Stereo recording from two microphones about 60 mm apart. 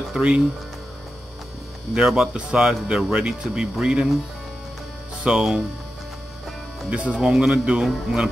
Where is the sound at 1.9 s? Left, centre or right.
Centre.